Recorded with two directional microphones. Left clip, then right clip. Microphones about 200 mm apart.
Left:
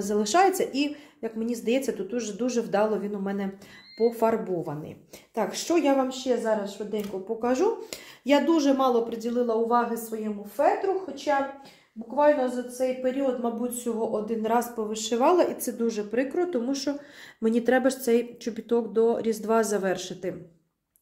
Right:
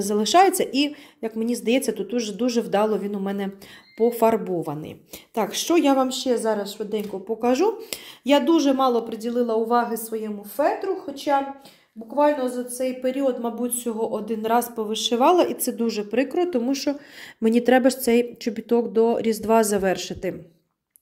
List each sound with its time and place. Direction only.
0.0 s a woman's voice: 40° right (ahead or behind); by 10.7 s 55° right (ahead or behind)
11.3 s a woman's voice: 65° right (ahead or behind); by 20.3 s 35° right (ahead or behind)